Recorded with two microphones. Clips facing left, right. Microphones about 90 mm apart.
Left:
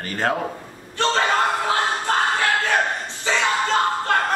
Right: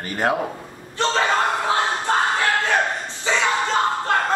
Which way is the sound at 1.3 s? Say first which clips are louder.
Even; 20° right (ahead or behind).